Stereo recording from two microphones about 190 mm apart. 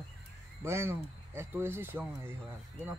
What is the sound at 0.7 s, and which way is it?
Speech, 15° right (ahead or behind).